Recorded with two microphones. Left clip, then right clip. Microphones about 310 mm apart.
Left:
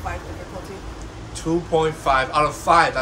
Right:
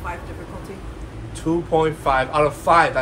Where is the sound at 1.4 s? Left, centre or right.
Right.